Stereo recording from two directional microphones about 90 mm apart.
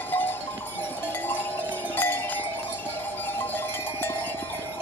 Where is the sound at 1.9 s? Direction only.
20° left (ahead or behind).